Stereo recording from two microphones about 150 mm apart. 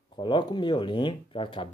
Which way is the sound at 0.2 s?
30° left (ahead or behind).